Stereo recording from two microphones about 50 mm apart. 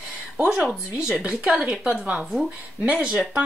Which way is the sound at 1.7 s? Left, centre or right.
Centre.